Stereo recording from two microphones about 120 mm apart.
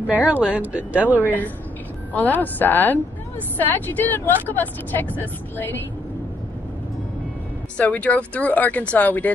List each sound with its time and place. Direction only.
0.1 s speech: 10° right (ahead or behind)
2.1 s speech: 15° left (ahead or behind)
7.7 s speech: 10° left (ahead or behind)